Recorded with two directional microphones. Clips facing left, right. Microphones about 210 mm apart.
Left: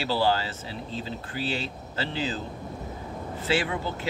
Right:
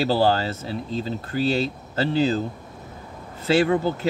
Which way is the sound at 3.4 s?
45° right (ahead or behind).